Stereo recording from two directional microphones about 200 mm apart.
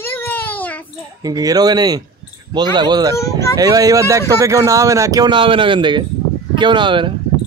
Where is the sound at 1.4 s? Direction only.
20° right (ahead or behind).